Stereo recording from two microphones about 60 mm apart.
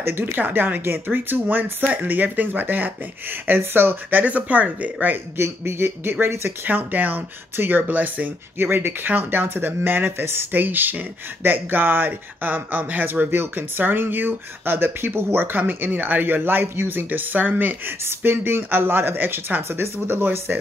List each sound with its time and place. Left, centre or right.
0.0 s speech: right
5.4 s speech: right